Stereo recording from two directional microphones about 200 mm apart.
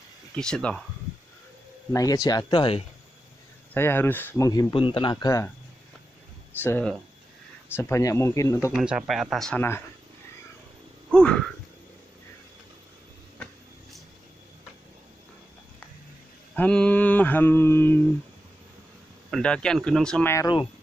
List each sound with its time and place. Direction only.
0.4 s speech: 5° left (ahead or behind)
1.9 s speech: 15° left (ahead or behind)
3.7 s speech: 10° left (ahead or behind)
6.6 s speech: 10° left (ahead or behind)
8.7 s speech: 5° right (ahead or behind)
11.1 s speech: 5° left (ahead or behind)
16.5 s mantra: 5° left (ahead or behind)
19.3 s speech: 5° left (ahead or behind)